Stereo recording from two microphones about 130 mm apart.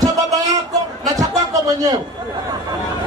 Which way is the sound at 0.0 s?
25° right (ahead or behind).